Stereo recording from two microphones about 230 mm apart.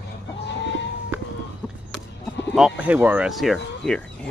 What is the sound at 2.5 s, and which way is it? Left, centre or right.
Speech, centre.